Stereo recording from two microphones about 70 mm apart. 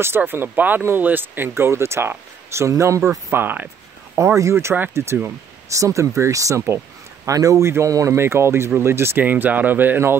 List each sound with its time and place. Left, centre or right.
0.0 s speech: right
3.3 s speech: right
4.2 s speech: right
5.8 s speech: right
9.2 s speech: right